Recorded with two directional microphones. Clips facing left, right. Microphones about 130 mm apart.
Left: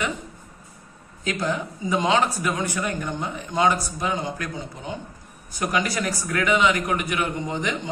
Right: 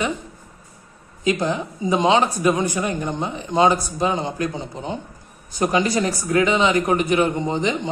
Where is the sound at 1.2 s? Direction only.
20° right (ahead or behind).